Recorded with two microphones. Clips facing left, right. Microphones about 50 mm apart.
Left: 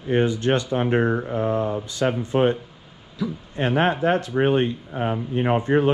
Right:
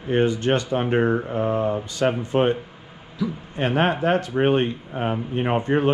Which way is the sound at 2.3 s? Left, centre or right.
Right.